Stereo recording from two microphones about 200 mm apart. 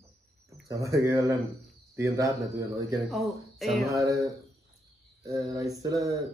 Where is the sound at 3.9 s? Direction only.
15° right (ahead or behind).